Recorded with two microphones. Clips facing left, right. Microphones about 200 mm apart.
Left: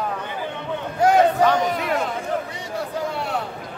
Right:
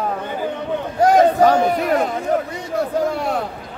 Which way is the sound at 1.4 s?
40° right (ahead or behind).